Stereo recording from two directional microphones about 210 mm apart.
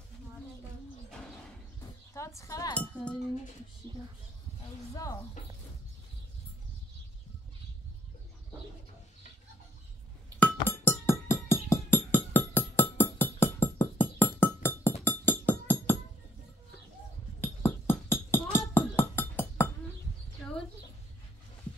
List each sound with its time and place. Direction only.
1.8 s chink: 15° left (ahead or behind)
4.9 s speech: 15° left (ahead or behind)
10.4 s music: 10° left (ahead or behind)
17.4 s music: 10° left (ahead or behind)